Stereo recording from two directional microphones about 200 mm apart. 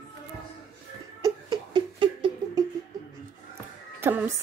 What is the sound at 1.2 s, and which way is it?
Laughter, 20° right (ahead or behind).